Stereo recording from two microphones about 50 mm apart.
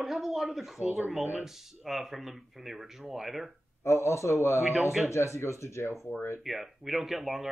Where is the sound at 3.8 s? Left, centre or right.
Left.